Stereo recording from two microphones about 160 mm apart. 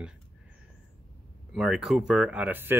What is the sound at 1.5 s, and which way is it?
Speech, centre (ahead or behind).